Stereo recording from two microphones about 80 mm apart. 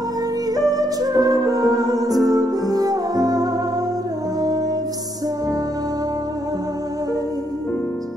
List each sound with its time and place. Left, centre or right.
0.6 s music: right